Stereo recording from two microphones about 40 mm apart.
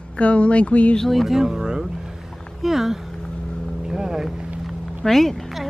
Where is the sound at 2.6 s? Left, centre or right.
Centre.